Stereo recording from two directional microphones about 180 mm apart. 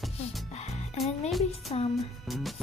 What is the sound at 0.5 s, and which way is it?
Music, 35° left (ahead or behind).